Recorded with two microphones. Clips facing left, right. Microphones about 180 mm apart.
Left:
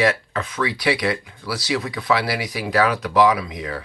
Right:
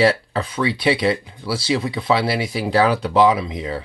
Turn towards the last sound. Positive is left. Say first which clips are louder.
# right 2 dB
turn(degrees=-25)  # may be behind; listen again after turning